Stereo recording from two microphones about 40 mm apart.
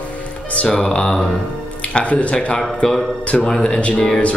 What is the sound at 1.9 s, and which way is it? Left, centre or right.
Speech, left.